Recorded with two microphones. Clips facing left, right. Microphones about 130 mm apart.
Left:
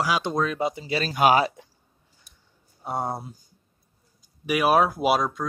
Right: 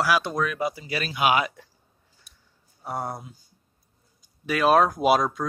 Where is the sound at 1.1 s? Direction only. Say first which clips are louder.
Left 3 dB; 40° left (ahead or behind).